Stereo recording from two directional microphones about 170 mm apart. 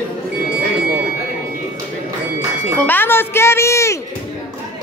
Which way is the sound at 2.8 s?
10° left (ahead or behind).